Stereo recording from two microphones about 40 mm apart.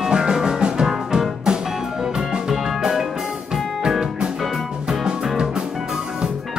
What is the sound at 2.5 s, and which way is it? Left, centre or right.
Music, centre.